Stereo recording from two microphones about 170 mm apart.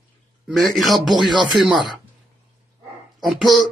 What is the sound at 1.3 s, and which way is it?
Speech, 25° right (ahead or behind).